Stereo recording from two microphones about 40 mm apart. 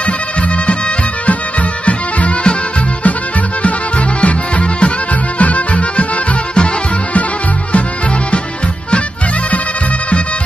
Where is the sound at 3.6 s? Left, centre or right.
Left.